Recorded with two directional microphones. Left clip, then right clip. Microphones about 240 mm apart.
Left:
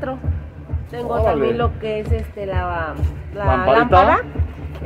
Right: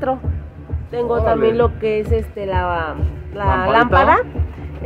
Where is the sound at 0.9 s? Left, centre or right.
Right.